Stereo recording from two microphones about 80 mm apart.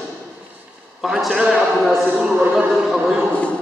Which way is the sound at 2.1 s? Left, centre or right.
Centre.